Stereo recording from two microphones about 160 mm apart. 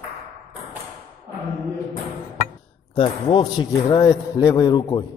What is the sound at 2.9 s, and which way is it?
A man's voice, 30° left (ahead or behind).